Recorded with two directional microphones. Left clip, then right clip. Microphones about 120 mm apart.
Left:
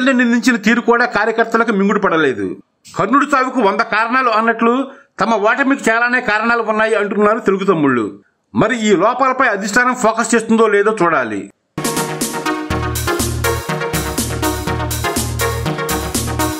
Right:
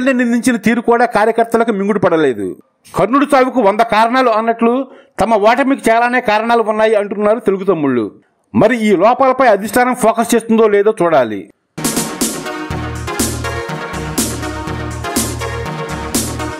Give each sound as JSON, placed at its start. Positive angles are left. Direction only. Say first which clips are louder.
{"t": 0.0, "sound": "a man's voice", "louder": "even", "side_deg": -40}
{"t": 3.0, "sound": "a man's voice", "louder": "right 2 dB", "side_deg": -40}
{"t": 11.8, "sound": "music", "louder": "even", "side_deg": 0}